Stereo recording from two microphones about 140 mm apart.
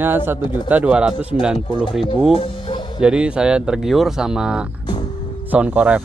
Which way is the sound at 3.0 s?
5° right (ahead or behind).